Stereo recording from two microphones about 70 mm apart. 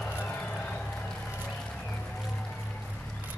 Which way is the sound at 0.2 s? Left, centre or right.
Left.